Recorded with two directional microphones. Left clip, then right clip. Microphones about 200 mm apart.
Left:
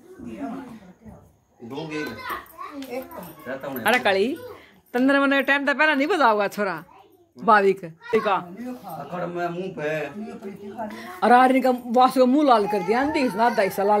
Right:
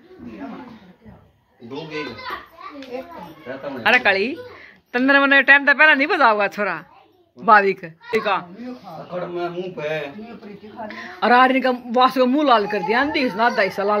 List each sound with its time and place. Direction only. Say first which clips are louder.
3.8 s a man's voice: right 4 dB; 10° left (ahead or behind)
9.8 s speech: right 2 dB; 20° right (ahead or behind)
10.9 s a man's voice: right 1 dB; 10° left (ahead or behind)